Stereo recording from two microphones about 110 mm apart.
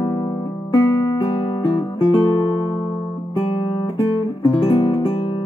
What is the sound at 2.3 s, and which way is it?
Music, 45° left (ahead or behind).